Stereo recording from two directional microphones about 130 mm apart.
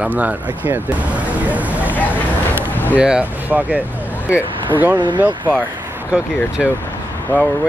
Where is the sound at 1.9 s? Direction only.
15° left (ahead or behind).